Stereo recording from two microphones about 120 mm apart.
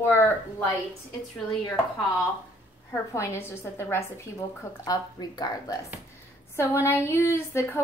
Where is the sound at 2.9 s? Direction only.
25° left (ahead or behind).